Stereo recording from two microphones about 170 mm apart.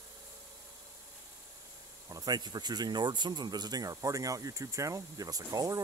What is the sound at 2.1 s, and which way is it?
Speech, 20° right (ahead or behind).